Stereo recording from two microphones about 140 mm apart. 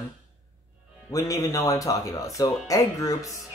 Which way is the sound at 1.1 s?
25° left (ahead or behind).